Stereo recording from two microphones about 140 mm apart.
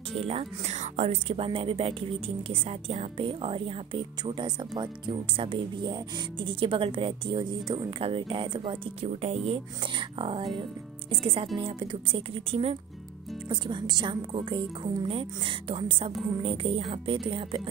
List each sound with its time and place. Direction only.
0.2 s speech: 45° right (ahead or behind)